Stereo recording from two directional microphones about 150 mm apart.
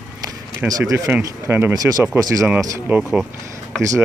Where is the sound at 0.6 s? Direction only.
25° right (ahead or behind).